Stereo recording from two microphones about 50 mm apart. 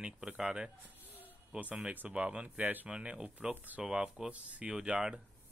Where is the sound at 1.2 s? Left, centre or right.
Right.